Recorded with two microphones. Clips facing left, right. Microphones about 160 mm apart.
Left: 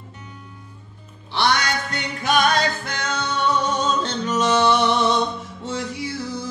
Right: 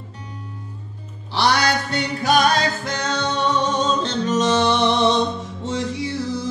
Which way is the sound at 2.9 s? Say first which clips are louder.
Right 3 dB; 35° right (ahead or behind).